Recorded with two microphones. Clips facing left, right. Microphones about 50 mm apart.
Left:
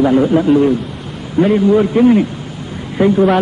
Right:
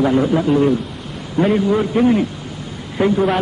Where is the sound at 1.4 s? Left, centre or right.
Left.